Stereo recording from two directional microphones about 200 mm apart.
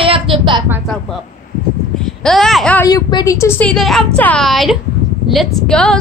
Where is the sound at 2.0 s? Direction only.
Centre (ahead or behind).